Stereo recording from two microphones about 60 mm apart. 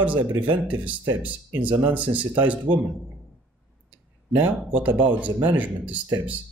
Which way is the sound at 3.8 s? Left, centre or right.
Right.